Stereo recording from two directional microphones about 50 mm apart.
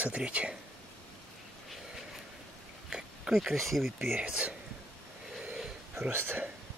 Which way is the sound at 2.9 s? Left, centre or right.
Centre.